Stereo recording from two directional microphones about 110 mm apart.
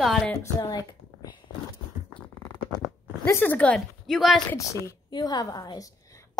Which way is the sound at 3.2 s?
20° left (ahead or behind).